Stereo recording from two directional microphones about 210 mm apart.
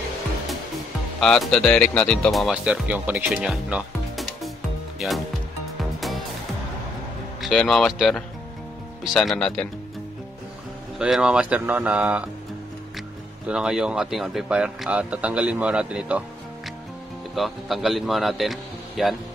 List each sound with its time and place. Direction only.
1.2 s speech: centre (ahead or behind)
4.9 s music: centre (ahead or behind)
7.4 s speech: centre (ahead or behind)
11.0 s speech: 5° right (ahead or behind)
13.5 s speech: 5° right (ahead or behind)
17.4 s speech: centre (ahead or behind)